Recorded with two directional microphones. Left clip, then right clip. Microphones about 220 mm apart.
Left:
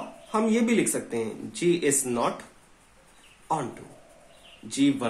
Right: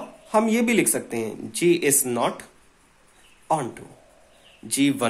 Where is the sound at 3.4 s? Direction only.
35° right (ahead or behind).